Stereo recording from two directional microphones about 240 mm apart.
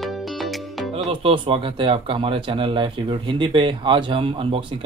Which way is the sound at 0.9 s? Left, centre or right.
Right.